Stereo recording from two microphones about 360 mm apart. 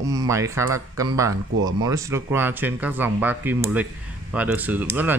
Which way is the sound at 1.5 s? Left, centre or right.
Right.